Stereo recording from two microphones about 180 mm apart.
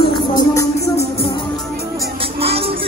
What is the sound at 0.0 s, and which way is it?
Music, 25° left (ahead or behind).